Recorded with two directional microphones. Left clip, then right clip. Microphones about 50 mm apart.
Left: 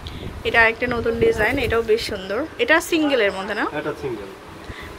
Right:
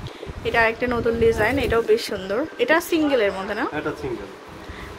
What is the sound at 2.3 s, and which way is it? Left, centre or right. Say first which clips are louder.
Speech: even; right.